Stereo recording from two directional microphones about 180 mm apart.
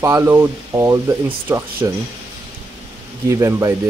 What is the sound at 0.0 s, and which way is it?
Speech, 15° right (ahead or behind).